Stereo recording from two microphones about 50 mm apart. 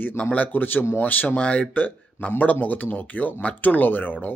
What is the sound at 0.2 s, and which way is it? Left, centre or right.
Speech, left.